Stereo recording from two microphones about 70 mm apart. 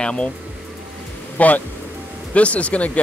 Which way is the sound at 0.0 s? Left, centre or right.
Centre.